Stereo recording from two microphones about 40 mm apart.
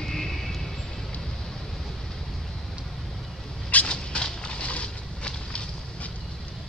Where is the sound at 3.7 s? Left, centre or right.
Left.